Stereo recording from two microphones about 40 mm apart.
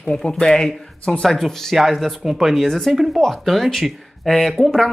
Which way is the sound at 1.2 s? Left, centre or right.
Centre.